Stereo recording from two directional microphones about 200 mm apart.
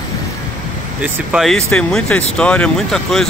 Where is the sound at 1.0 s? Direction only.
5° right (ahead or behind).